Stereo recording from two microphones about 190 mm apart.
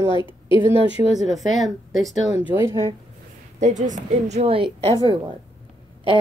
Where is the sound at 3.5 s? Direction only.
40° right (ahead or behind).